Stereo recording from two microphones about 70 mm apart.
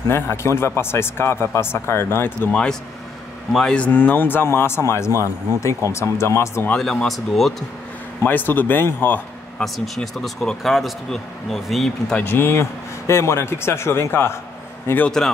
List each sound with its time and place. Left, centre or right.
0.1 s a man's voice: left
2.5 s speech: centre; by 5.1 s left
5.1 s speech: right
5.9 s a man's voice: left
6.8 s speech: centre
8.2 s speech: left
9.6 s speech: centre
12.2 s a man's voice: left
15.0 s speech: centre